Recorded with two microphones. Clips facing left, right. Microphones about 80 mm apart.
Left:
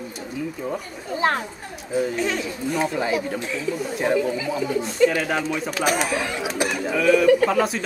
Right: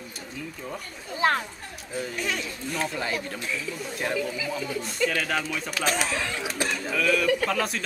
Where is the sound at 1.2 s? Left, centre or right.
Left.